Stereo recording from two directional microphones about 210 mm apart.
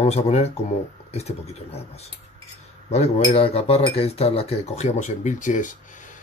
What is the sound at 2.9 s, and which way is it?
Speech, 30° left (ahead or behind).